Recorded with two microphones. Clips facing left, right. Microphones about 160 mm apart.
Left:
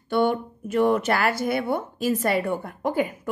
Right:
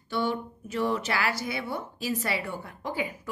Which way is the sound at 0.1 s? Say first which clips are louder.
Left 7 dB; 55° left (ahead or behind).